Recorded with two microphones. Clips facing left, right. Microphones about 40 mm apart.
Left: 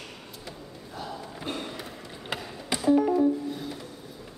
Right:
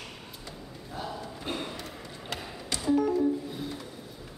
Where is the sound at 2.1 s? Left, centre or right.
Centre.